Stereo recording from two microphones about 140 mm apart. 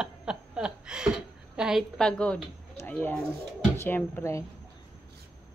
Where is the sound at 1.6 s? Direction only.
Centre (ahead or behind).